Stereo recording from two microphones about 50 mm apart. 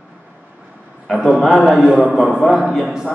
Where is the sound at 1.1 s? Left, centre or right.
Centre.